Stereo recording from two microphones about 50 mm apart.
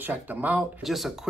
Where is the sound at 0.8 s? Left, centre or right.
Centre.